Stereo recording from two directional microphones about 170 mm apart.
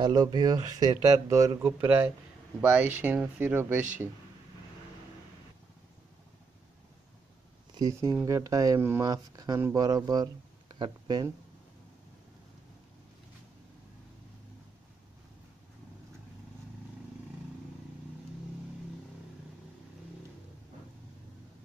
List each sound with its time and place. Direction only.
0.0 s speech: 25° right (ahead or behind)
7.7 s a sound: 20° right (ahead or behind)
8.3 s speech: 20° right (ahead or behind)